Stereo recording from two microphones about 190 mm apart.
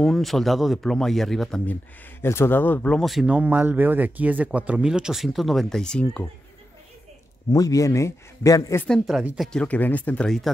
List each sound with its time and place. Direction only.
0.0 s speech: centre (ahead or behind)
2.2 s speech: 15° left (ahead or behind)
7.5 s a man's voice: 20° left (ahead or behind)
8.8 s speech: centre (ahead or behind)